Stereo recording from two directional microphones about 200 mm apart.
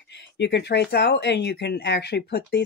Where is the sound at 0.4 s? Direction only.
60° left (ahead or behind).